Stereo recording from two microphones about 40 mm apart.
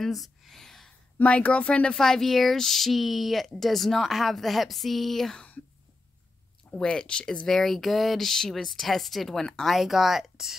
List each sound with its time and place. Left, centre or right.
0.0 s a sound: centre
1.2 s speech: left
2.0 s speech: centre
6.7 s speech: left
7.4 s speech: centre
9.8 s speech: centre